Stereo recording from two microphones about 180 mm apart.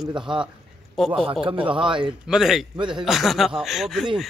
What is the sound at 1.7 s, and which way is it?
Speech, 25° right (ahead or behind).